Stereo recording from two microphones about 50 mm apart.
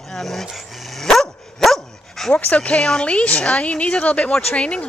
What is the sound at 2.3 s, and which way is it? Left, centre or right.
Speech, left.